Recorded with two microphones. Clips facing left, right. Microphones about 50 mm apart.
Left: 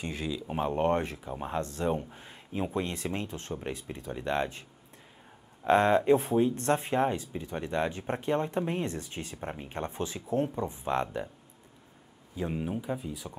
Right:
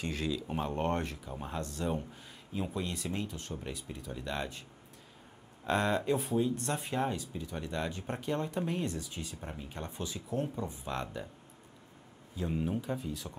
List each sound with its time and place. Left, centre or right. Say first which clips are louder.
0.0 s speech: even; centre; by 11.2 s left
12.4 s speech: left 2 dB; left
12.6 s speech: left 1 dB; centre